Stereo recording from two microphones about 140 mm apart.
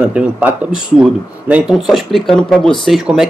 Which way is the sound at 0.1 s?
10° right (ahead or behind).